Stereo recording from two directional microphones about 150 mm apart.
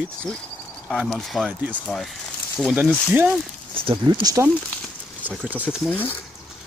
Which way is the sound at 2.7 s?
10° right (ahead or behind).